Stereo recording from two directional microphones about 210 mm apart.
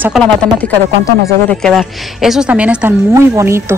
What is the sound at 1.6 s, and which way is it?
Speech, centre (ahead or behind).